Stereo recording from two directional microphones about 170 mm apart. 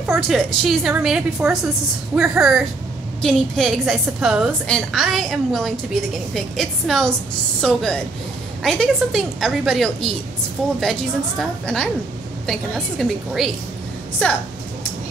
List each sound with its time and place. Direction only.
0.0 s a woman's voice: centre (ahead or behind)